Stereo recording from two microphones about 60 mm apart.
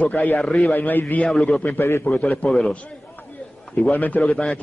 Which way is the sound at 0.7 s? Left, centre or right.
Left.